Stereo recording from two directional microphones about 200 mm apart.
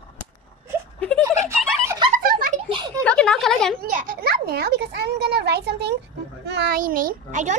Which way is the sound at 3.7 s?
45° right (ahead or behind).